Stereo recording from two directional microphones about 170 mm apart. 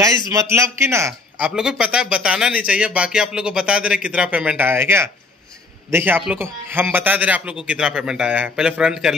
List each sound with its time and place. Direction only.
0.3 s a man's voice: 15° right (ahead or behind)
1.5 s a man's voice: 5° right (ahead or behind)